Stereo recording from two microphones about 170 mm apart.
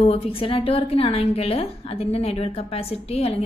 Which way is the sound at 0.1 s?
35° left (ahead or behind).